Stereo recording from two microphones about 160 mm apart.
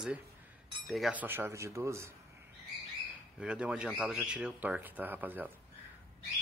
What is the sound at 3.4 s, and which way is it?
Speech, 5° right (ahead or behind).